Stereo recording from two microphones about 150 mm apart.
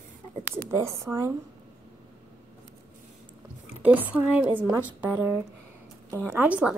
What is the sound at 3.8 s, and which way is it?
A woman's voice, 10° right (ahead or behind).